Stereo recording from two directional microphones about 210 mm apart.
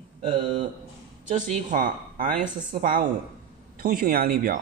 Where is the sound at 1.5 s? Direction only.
40° right (ahead or behind).